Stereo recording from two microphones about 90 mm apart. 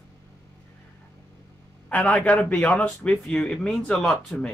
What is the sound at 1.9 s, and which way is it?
A man's voice, 15° left (ahead or behind).